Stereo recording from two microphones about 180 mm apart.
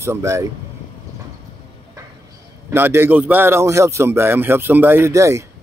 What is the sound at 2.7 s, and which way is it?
Speech, 10° right (ahead or behind).